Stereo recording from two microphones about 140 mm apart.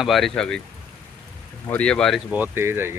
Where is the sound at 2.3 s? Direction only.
15° right (ahead or behind).